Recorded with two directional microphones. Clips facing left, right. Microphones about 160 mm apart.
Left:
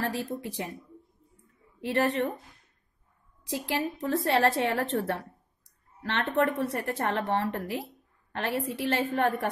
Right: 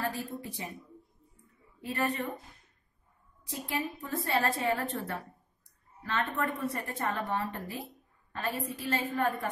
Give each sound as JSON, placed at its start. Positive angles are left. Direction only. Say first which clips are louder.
{"t": 0.0, "sound": "a woman's voice", "louder": "left 4 dB", "side_deg": 80}
{"t": 1.8, "sound": "a woman's voice", "louder": "left 6 dB", "side_deg": 80}
{"t": 3.4, "sound": "a woman's voice", "louder": "left 5 dB", "side_deg": 85}